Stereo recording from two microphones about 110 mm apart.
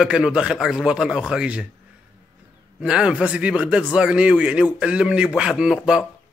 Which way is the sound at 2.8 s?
10° right (ahead or behind).